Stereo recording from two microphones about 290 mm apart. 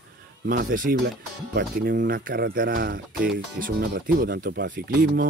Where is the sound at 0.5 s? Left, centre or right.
Right.